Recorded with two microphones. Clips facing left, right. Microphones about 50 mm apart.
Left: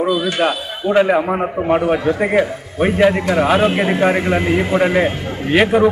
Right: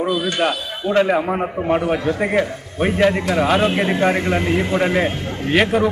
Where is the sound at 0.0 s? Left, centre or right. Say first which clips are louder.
Left 3 dB; centre.